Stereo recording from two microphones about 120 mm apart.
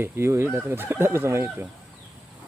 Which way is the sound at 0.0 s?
20° right (ahead or behind).